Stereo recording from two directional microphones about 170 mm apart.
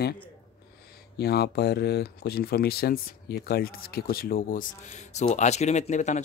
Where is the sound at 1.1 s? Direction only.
75° left (ahead or behind).